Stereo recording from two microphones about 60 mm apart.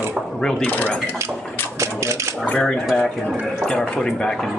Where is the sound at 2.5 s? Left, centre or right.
Centre.